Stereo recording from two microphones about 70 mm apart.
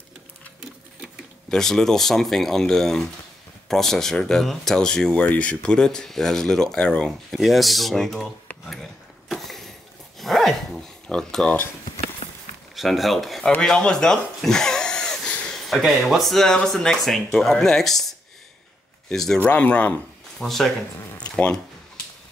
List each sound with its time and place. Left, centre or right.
1.5 s speech: centre
9.3 s a sound: centre
10.1 s dog: centre
11.1 s speech: centre
12.7 s speech: centre
13.6 s a sound: centre
15.6 s speech: centre
19.0 s speech: centre
19.4 s speech: left
20.3 s speech: centre